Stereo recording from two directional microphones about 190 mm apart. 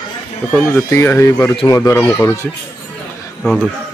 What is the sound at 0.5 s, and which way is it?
Speech, 15° left (ahead or behind).